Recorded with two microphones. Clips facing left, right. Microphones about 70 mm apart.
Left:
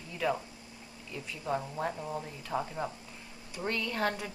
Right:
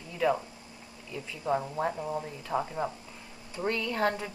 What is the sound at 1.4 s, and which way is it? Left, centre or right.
A woman's voice, centre.